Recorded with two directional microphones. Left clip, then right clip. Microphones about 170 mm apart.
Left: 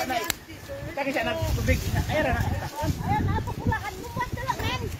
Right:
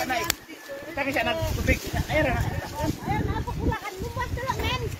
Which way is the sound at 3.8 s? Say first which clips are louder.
Even; 55° left (ahead or behind).